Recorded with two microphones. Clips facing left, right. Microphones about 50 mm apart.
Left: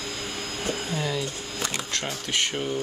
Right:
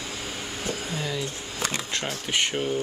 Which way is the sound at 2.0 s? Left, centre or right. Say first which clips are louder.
Right 1 dB; centre.